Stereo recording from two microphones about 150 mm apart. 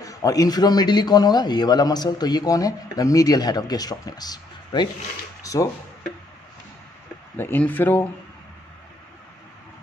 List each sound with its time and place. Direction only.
0.0 s a man's voice: 25° left (ahead or behind)
5.4 s a sound: 20° left (ahead or behind)
7.3 s speech: 15° left (ahead or behind)